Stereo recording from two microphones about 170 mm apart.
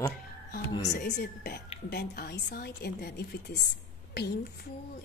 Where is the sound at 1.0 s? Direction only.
70° left (ahead or behind).